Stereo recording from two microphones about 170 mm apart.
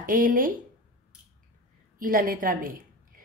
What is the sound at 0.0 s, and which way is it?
Speech, 55° right (ahead or behind).